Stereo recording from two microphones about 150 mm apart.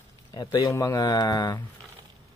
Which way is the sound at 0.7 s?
20° left (ahead or behind).